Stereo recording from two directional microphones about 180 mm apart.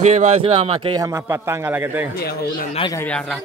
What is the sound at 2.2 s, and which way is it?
Speech, 60° left (ahead or behind).